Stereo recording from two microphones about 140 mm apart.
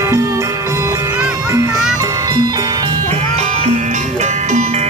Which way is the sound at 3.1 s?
50° right (ahead or behind).